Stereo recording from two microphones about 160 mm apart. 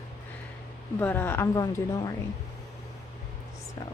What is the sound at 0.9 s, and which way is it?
Speech, 10° left (ahead or behind).